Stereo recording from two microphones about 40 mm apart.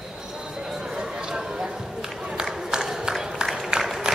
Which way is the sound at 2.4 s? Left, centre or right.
Centre.